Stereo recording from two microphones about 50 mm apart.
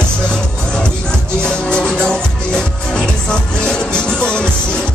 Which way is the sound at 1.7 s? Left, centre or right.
Centre.